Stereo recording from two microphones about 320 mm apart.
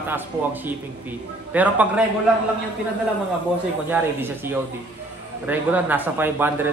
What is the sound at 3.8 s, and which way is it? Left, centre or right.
Speech, centre.